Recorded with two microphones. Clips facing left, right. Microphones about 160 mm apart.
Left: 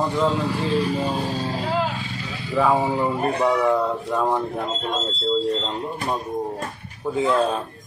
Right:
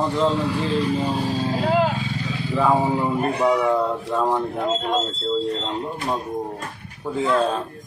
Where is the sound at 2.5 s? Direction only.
Centre (ahead or behind).